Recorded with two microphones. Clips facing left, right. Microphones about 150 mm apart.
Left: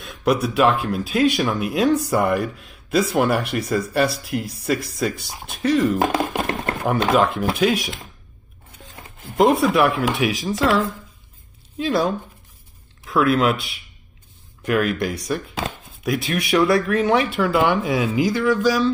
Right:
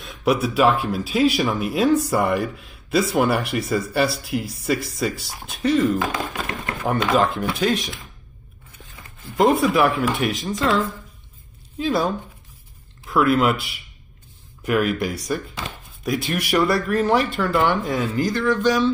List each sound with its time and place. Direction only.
0.0 s speech: centre (ahead or behind)
5.9 s music: 45° left (ahead or behind)
7.2 s speech: centre (ahead or behind)
9.4 s speech: centre (ahead or behind)
11.8 s speech: centre (ahead or behind)